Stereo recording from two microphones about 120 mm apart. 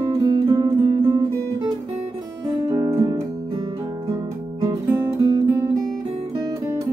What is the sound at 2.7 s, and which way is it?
Music, 25° right (ahead or behind).